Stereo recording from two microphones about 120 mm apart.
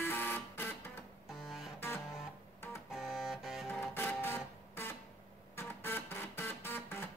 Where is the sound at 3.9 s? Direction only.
20° left (ahead or behind).